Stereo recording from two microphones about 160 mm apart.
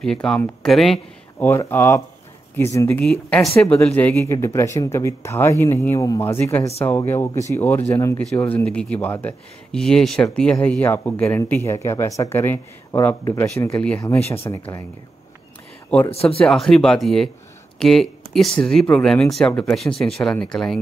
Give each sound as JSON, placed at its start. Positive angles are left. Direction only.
{"t": 0.0, "sound": "speech", "side_deg": 5}
{"t": 1.4, "sound": "speech", "side_deg": 15}
{"t": 14.5, "sound": "speech", "side_deg": 20}
{"t": 16.1, "sound": "speech", "side_deg": 40}
{"t": 16.4, "sound": "speech", "side_deg": 5}